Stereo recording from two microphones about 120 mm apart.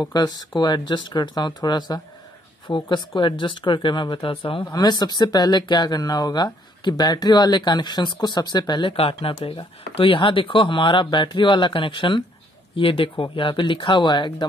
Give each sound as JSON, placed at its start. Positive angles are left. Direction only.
{"t": 0.0, "sound": "speech", "side_deg": 35}
{"t": 4.6, "sound": "speech", "side_deg": 35}